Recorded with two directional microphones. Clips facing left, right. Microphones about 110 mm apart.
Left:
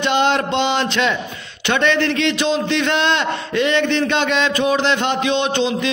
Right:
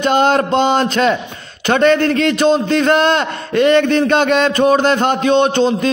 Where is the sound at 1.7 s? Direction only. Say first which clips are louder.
Right 5 dB; 45° right (ahead or behind).